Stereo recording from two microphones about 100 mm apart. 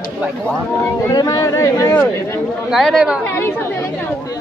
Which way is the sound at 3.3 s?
25° left (ahead or behind).